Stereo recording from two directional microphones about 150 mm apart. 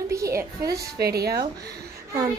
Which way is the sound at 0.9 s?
90° right.